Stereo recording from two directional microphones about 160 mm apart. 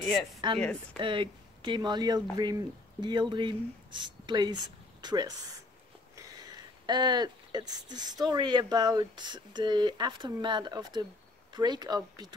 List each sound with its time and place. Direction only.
0.4 s speech: 30° right (ahead or behind)
6.9 s speech: 25° right (ahead or behind)